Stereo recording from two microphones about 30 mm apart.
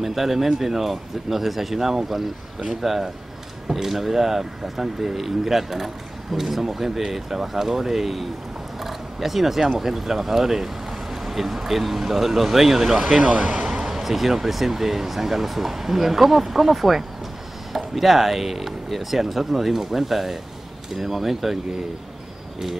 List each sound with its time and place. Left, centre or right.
0.0 s speech: centre
8.8 s a sound: centre
9.8 s speech: centre
13.2 s speech: right
13.7 s speech: centre